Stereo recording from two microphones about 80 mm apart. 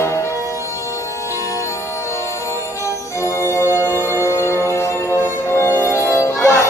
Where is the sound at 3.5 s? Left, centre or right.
Left.